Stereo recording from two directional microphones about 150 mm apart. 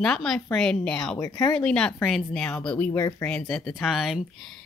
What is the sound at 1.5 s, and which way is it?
Speech, 5° left (ahead or behind).